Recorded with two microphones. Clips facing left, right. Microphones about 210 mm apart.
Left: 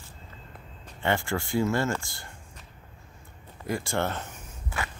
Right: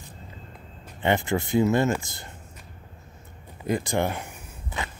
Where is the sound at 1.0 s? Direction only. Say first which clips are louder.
Right 4 dB; 20° right (ahead or behind).